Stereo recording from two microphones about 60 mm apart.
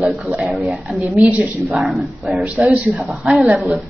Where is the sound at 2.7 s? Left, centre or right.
Right.